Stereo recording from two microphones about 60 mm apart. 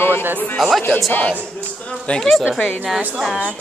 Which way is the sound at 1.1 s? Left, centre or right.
Left.